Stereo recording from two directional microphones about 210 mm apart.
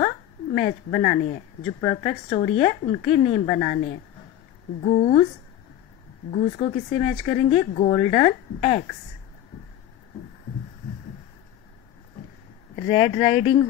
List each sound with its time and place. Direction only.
0.6 s speech: 40° left (ahead or behind)
6.3 s speech: 30° left (ahead or behind)
12.7 s speech: 30° left (ahead or behind)